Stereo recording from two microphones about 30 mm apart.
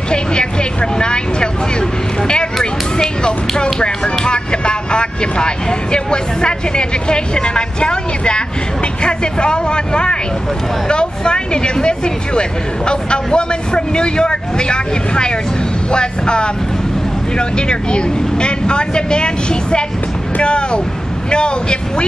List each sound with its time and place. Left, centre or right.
0.1 s vehicle: left
3.3 s speech: left